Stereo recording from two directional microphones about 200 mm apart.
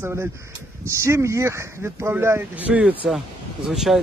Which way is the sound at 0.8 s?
15° right (ahead or behind).